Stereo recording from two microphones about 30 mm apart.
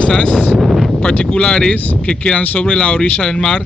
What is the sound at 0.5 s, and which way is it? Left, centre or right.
Wind noise, centre.